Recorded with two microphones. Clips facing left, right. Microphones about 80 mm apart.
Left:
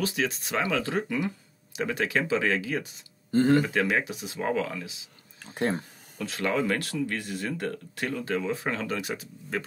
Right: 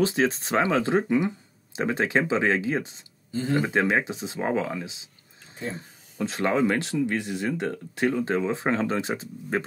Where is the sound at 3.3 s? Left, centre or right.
Left.